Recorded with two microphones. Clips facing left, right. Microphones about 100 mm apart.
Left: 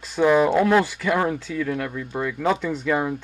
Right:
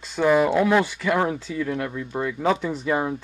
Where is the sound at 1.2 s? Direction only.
15° right (ahead or behind).